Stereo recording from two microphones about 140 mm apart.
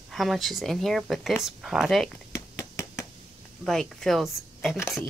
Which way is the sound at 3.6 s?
5° left (ahead or behind).